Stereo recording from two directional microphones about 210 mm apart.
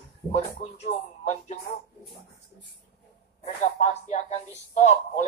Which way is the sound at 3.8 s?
30° left (ahead or behind).